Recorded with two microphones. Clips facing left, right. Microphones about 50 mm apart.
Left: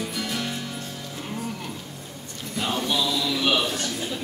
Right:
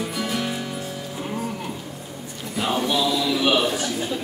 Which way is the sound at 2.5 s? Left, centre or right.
Centre.